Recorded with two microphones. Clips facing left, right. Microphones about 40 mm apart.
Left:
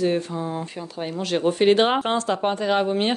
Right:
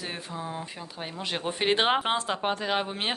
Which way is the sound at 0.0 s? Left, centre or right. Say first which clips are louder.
Left 12 dB; centre.